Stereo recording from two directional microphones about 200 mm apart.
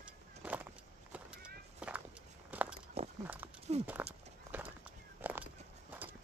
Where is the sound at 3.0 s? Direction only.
30° right (ahead or behind).